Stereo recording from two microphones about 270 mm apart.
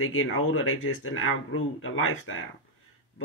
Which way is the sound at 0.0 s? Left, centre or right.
Left.